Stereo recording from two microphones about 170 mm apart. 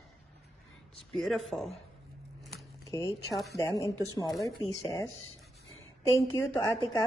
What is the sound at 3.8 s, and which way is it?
Speech, 20° left (ahead or behind).